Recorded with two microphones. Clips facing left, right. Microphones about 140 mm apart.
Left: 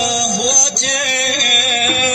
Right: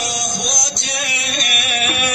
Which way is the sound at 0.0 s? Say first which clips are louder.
Left 7 dB; 90° left.